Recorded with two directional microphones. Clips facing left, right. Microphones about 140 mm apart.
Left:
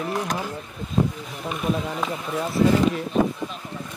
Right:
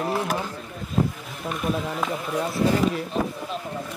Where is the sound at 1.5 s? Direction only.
Centre (ahead or behind).